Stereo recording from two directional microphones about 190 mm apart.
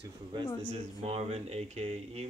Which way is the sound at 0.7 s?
35° right (ahead or behind).